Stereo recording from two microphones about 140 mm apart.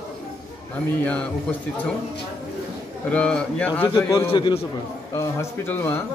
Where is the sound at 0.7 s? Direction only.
10° left (ahead or behind).